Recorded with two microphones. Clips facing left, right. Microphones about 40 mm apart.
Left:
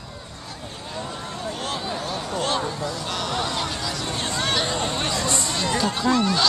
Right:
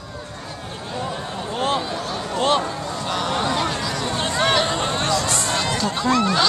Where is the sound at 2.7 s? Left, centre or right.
Right.